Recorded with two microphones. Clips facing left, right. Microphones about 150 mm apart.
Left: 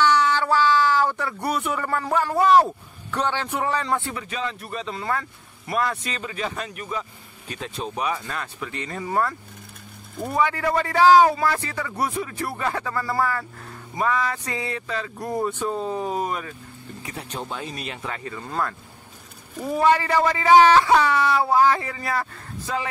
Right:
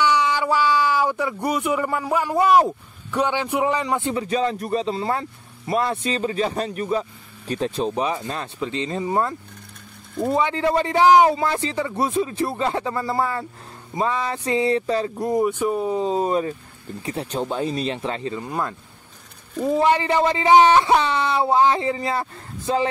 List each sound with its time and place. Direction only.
0.0 s speech: 15° right (ahead or behind)
4.1 s speech: 30° right (ahead or behind)
15.4 s speech: 15° right (ahead or behind)